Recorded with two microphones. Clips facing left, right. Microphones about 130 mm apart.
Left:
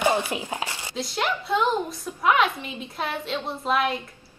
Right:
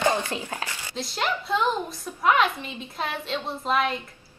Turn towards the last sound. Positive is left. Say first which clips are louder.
# left 1 dB
turn(degrees=0)  # may be behind; listen again after turning